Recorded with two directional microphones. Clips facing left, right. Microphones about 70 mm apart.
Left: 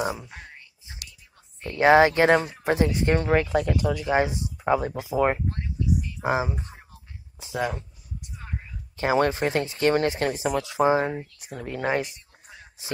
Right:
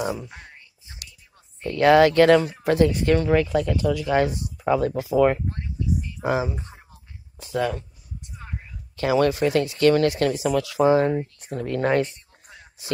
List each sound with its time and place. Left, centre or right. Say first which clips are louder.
0.0 s speech: right 1 dB; centre
1.6 s speech: right 1 dB; left
8.9 s speech: right 2 dB; left
11.3 s speech: right 6 dB; centre